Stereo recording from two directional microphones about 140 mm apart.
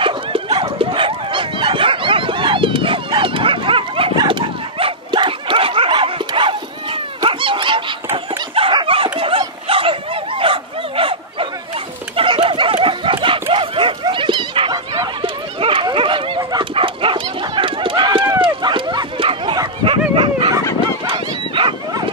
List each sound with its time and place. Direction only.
0.0 s dog: 40° right (ahead or behind)
9.7 s bow-wow: 40° right (ahead or behind)
12.2 s a sound: 40° right (ahead or behind)
12.8 s dog: 40° right (ahead or behind)
21.5 s dog: 35° right (ahead or behind)